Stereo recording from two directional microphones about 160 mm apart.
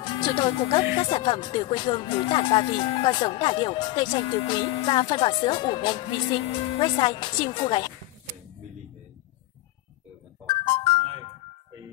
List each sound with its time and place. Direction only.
0.0 s speech: 30° left (ahead or behind)